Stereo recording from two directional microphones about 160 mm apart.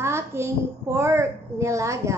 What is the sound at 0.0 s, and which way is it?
A child's voice, 15° right (ahead or behind).